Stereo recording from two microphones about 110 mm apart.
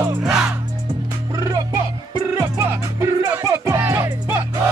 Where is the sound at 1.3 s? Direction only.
30° right (ahead or behind).